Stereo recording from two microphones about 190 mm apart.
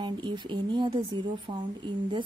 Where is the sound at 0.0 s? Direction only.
25° right (ahead or behind).